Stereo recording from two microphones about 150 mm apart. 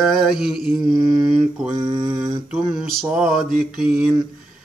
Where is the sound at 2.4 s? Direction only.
5° right (ahead or behind).